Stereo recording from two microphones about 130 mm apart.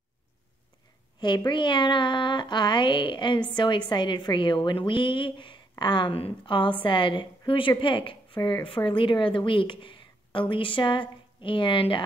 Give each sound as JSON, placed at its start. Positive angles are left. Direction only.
{"t": 1.2, "sound": "a woman's voice", "side_deg": 35}